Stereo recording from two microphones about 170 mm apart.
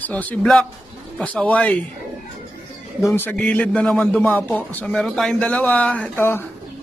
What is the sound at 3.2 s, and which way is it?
Speech, 10° left (ahead or behind).